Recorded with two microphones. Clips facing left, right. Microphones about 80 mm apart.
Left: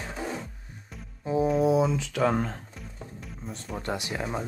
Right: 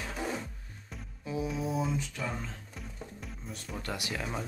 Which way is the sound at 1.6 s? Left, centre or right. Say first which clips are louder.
Left 9 dB; left.